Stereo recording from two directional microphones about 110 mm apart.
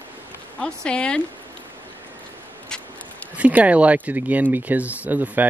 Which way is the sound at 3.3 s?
15° right (ahead or behind).